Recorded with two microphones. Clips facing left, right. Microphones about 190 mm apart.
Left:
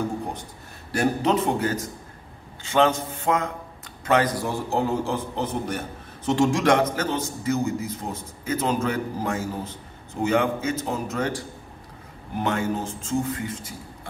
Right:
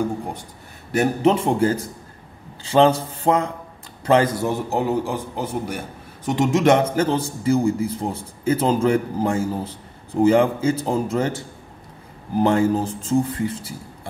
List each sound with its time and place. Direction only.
0.9 s a man's voice: 25° right (ahead or behind)